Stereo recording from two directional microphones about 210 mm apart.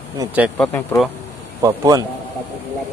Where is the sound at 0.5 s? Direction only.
10° left (ahead or behind).